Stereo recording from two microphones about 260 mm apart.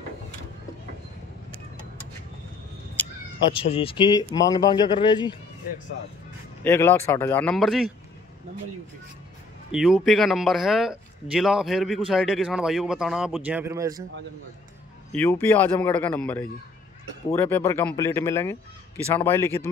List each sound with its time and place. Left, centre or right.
3.0 s cat: centre
3.5 s speech: left
6.6 s speech: centre
9.7 s speech: centre
15.1 s speech: centre